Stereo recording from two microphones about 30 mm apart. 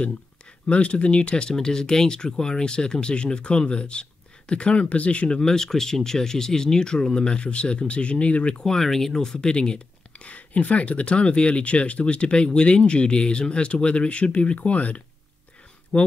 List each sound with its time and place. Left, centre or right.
0.7 s speech: left
1.6 s speech: left
4.7 s speech: left
5.3 s speech: left
8.6 s speech: centre; by 10.2 s left
10.2 s speech: left
15.9 s speech: left